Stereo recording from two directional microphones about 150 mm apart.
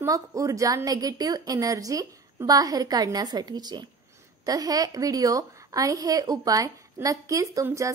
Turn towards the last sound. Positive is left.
turn(degrees=-20)  # may be behind; listen again after turning